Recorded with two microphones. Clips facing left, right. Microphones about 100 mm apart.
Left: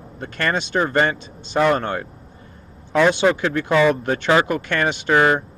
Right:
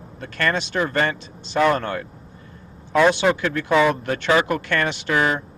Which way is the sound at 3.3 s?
20° left (ahead or behind).